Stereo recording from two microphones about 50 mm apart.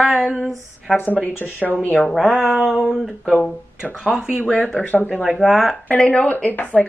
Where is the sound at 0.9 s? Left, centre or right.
Left.